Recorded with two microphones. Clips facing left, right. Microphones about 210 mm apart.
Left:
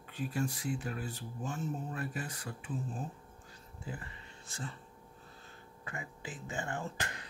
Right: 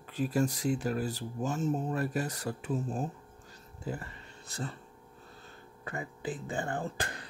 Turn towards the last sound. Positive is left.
turn(degrees=-35)  # may be behind; listen again after turning